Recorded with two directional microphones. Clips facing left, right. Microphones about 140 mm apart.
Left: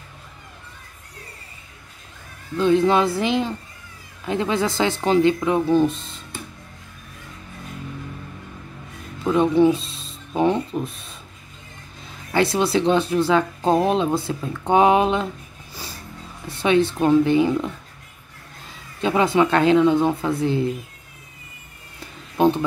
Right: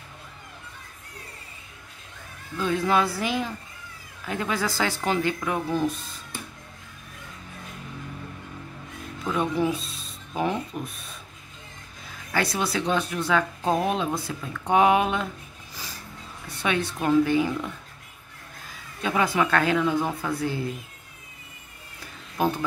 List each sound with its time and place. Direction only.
2.5 s speech: 25° left (ahead or behind)
9.2 s speech: 25° left (ahead or behind)
12.3 s speech: 25° left (ahead or behind)
16.4 s speech: 25° left (ahead or behind)
18.9 s speech: 25° left (ahead or behind)
22.4 s speech: 25° left (ahead or behind)